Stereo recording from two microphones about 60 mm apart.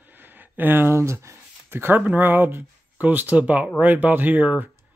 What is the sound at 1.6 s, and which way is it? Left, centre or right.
Speech, right.